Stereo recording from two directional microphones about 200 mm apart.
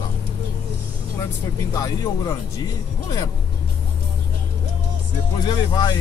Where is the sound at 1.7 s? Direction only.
15° left (ahead or behind).